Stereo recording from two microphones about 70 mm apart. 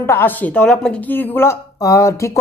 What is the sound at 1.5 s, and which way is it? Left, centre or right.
Speech, left.